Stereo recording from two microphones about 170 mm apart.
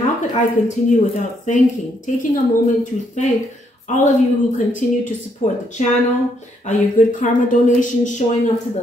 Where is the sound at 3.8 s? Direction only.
45° left (ahead or behind).